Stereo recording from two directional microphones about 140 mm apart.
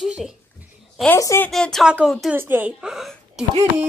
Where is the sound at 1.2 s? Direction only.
20° left (ahead or behind).